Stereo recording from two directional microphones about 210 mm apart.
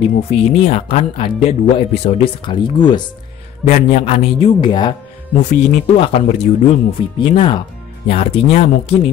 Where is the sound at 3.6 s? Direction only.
35° left (ahead or behind).